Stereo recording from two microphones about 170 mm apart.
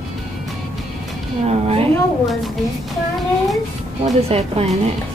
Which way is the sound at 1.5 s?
35° right (ahead or behind).